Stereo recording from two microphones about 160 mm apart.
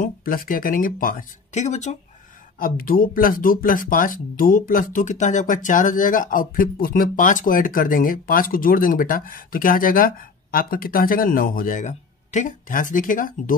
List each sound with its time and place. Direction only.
0.0 s speech: 65° left (ahead or behind); by 2.0 s 45° left (ahead or behind)
2.6 s speech: 60° left (ahead or behind)